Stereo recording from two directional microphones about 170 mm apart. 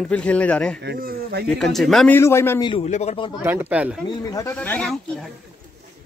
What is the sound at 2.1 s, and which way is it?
Speech, 15° left (ahead or behind).